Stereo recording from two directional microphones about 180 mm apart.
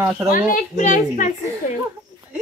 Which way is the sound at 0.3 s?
45° left (ahead or behind).